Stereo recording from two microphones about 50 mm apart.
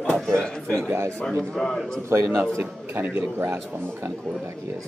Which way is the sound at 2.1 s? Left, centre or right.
Right.